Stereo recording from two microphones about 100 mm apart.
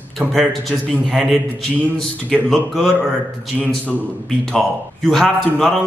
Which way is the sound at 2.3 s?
5° left (ahead or behind).